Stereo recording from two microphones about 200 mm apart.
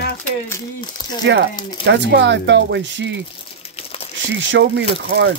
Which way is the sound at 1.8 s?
60° right (ahead or behind).